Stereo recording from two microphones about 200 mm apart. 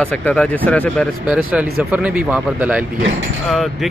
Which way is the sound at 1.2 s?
5° right (ahead or behind).